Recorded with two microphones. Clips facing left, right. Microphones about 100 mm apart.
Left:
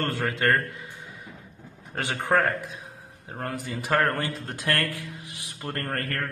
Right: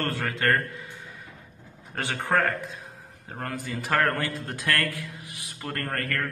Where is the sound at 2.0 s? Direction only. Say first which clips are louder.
Left 1 dB; 15° left (ahead or behind).